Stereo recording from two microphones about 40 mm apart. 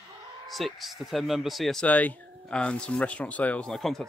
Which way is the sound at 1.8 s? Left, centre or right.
Left.